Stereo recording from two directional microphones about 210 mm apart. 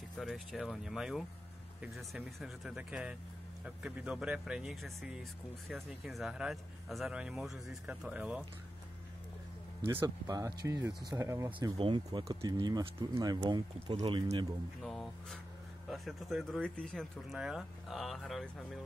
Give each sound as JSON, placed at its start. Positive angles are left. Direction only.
{"t": 0.2, "sound": "speech", "side_deg": 0}
{"t": 9.8, "sound": "speech", "side_deg": -15}
{"t": 14.8, "sound": "speech", "side_deg": 0}